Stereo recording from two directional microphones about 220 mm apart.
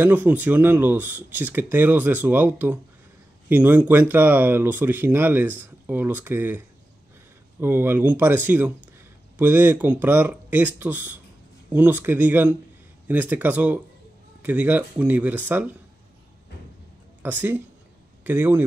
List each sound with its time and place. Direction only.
0.0 s speech: 10° right (ahead or behind)
7.6 s speech: 10° right (ahead or behind)
17.2 s a man's voice: 10° right (ahead or behind)